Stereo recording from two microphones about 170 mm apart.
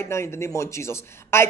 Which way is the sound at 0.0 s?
15° left (ahead or behind).